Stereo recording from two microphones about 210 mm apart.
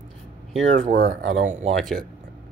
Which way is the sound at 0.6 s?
40° right (ahead or behind).